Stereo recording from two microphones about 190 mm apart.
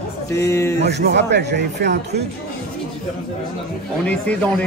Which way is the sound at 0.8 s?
60° right (ahead or behind).